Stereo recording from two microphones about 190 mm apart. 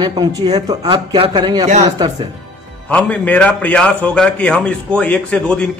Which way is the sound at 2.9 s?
5° left (ahead or behind).